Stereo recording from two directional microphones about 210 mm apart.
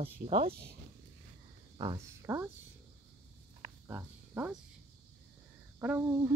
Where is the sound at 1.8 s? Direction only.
15° right (ahead or behind).